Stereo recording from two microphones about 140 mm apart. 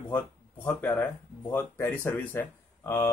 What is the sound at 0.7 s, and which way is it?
Speech, 15° left (ahead or behind).